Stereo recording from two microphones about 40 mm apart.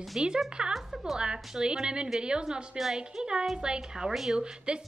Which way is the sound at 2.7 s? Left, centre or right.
Centre.